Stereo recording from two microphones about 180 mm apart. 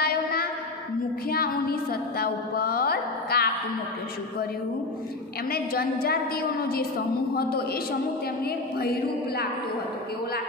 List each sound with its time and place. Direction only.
0.0 s a sound: 55° left (ahead or behind)
1.3 s music: 55° left (ahead or behind)
5.5 s a woman's voice: 55° left (ahead or behind)
7.3 s a woman's voice: 55° left (ahead or behind)